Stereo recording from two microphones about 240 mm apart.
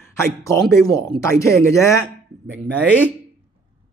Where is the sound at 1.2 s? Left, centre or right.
Centre.